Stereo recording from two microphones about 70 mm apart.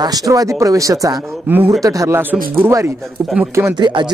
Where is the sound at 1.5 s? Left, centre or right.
Right.